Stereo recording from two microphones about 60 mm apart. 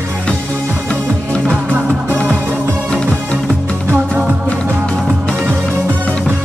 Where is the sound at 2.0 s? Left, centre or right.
Left.